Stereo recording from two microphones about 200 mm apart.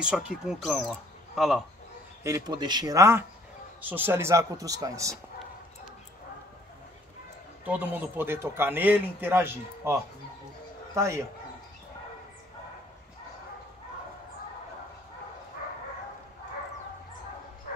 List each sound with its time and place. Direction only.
0.0 s speech: 5° right (ahead or behind)
2.2 s speech: 20° right (ahead or behind)
7.6 s speech: 10° right (ahead or behind)
11.0 s speech: 15° right (ahead or behind)